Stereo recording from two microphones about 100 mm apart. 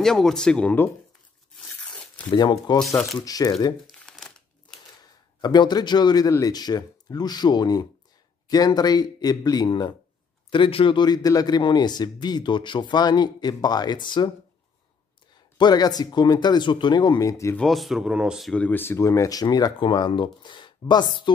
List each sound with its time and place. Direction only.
0.0 s speech: 5° left (ahead or behind)
1.5 s tearing: 5° left (ahead or behind)
2.2 s speech: 45° left (ahead or behind)
4.0 s crumpling: 5° left (ahead or behind)
5.4 s speech: 45° left (ahead or behind)
10.5 s speech: 60° left (ahead or behind)
15.5 s speech: 45° left (ahead or behind)
17.2 s speech: 30° left (ahead or behind)
17.6 s speech: centre (ahead or behind)
18.5 s speech: 15° left (ahead or behind); by 19.7 s 40° left (ahead or behind)
19.8 s speech: 55° left (ahead or behind)